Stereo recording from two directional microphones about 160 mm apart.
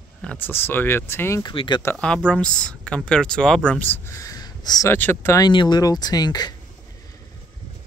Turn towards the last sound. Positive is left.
turn(degrees=25)  # may be behind; listen again after turning